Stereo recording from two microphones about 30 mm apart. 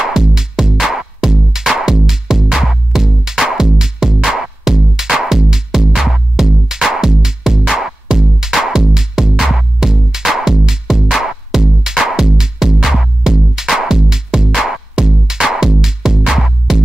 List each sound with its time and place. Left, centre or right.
0.1 s music: centre